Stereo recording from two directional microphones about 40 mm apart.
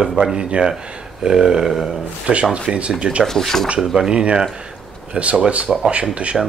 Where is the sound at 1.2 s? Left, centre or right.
Centre.